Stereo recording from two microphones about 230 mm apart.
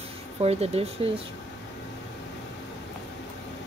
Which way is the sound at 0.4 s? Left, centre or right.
Right.